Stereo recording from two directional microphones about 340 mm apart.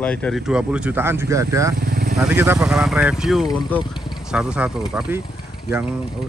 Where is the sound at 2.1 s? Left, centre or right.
Centre.